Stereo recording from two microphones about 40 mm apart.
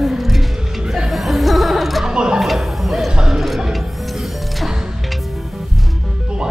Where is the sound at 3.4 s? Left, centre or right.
Centre.